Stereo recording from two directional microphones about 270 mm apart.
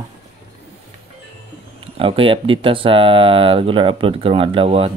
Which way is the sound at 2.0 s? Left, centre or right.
Centre.